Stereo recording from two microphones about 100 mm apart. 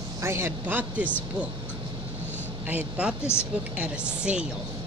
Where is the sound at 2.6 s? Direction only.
15° right (ahead or behind).